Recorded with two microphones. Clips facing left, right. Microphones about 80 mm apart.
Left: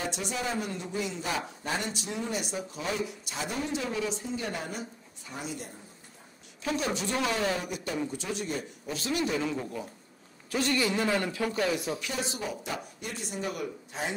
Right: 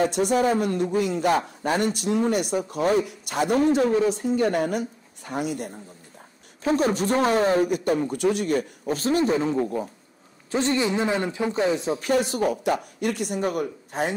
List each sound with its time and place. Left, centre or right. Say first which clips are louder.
0.0 s a man's voice: right 12 dB; right
4.2 s a woman's voice: right 12 dB; right
6.6 s a man's voice: right 9 dB; right
8.8 s speech: right 7 dB; right
10.5 s a man's voice: right 5 dB; right
12.0 s a man's voice: right 12 dB; right